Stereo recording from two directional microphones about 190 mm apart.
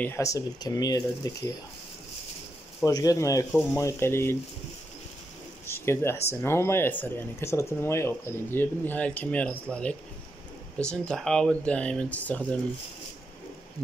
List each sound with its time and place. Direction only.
0.0 s speech: 15° left (ahead or behind)
2.8 s speech: 20° left (ahead or behind)
5.7 s speech: 15° left (ahead or behind)